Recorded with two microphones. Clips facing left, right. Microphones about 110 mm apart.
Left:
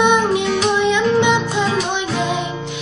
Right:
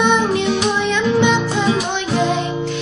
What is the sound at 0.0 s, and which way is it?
Music, 15° left (ahead or behind).